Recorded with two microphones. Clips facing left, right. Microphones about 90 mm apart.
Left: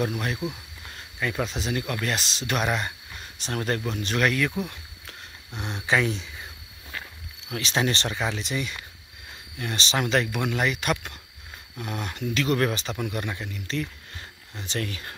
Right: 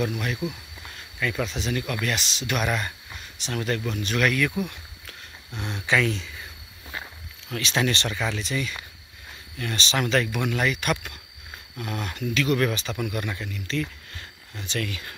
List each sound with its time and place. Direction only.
0.0 s speech: 30° left (ahead or behind)
1.2 s speech: 20° left (ahead or behind)
3.4 s speech: 35° left (ahead or behind)
5.6 s speech: 25° left (ahead or behind)
7.4 s speech: 20° left (ahead or behind)
11.7 s speech: 10° left (ahead or behind)
12.4 s speech: 30° left (ahead or behind)